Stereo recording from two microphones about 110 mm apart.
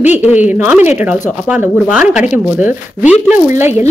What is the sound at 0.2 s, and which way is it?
Speech, 15° right (ahead or behind).